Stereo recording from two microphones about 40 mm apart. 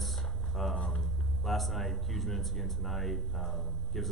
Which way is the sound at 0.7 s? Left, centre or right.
Left.